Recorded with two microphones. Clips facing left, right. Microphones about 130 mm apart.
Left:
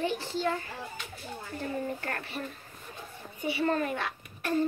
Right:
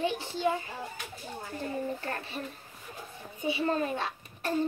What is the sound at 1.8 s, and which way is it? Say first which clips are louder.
Speech: even; 20° right (ahead or behind).